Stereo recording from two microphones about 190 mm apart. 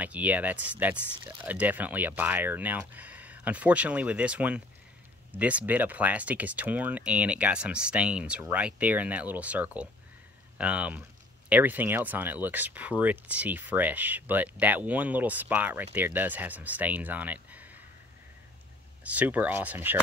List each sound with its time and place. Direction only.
0.0 s speech: 10° right (ahead or behind)
19.0 s speech: 10° right (ahead or behind)